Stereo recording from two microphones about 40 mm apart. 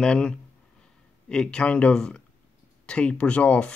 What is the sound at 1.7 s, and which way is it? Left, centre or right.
Speech, left.